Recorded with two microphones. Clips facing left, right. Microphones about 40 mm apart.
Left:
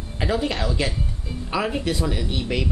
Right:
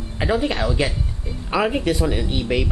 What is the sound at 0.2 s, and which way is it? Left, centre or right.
Speech, centre.